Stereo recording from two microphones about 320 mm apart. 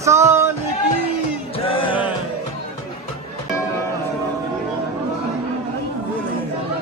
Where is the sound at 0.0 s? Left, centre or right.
Centre.